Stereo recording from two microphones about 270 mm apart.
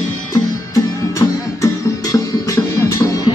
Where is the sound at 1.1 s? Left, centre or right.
Centre.